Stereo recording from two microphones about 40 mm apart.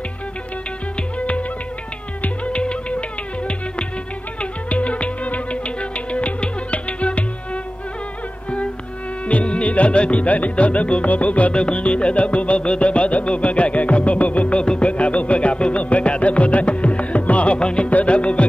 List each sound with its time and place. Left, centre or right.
2.2 s music: left
9.2 s music: left
17.6 s music: left
17.8 s music: left